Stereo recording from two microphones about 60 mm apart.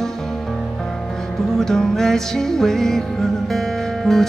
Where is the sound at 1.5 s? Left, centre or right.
Centre.